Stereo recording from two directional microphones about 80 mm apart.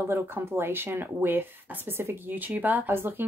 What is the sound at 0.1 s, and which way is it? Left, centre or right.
Speech, right.